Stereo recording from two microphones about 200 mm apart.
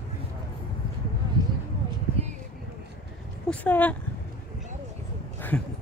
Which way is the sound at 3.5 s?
10° left (ahead or behind).